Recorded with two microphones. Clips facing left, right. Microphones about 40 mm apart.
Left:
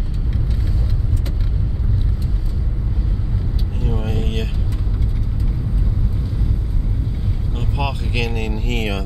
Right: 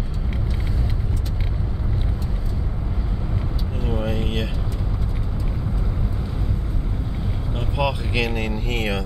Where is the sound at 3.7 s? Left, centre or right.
Centre.